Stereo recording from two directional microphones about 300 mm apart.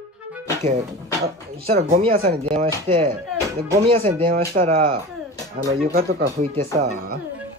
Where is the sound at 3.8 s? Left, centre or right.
Centre.